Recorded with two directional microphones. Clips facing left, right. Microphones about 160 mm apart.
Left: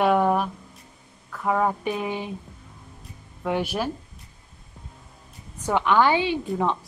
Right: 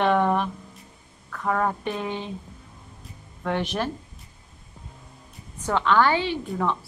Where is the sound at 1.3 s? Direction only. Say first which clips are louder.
Left 2 dB; 10° left (ahead or behind).